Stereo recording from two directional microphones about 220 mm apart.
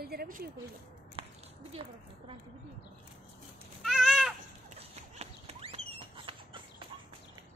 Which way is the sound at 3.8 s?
Centre (ahead or behind).